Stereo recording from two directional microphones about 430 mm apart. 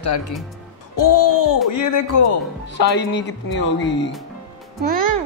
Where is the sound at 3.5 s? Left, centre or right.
Left.